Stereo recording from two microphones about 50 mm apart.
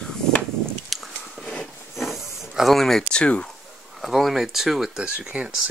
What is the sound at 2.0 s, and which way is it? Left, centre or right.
Hiss, centre.